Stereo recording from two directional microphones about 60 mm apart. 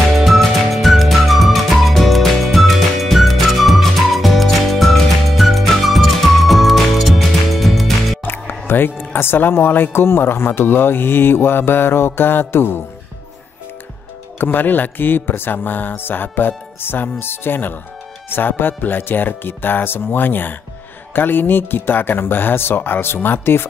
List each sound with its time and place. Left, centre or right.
0.2 s music: centre
8.2 s music: left
9.1 s speech: left
14.4 s speech: left